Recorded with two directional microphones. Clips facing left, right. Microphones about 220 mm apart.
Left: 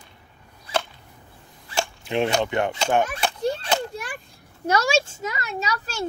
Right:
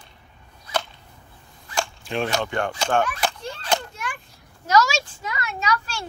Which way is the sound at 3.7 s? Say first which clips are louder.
Left 4 dB; 35° left (ahead or behind).